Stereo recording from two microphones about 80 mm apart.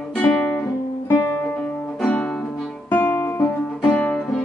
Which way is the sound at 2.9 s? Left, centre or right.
Left.